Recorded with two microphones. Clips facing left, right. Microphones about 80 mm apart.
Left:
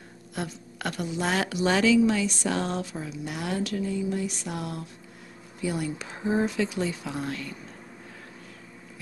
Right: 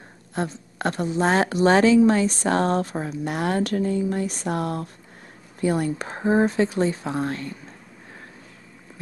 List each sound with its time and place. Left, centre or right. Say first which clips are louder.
0.3 s a woman's voice: right 6 dB; right